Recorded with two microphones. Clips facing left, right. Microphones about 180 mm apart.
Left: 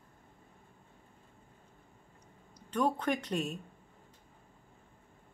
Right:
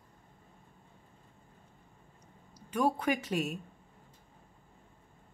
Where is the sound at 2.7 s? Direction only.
10° right (ahead or behind).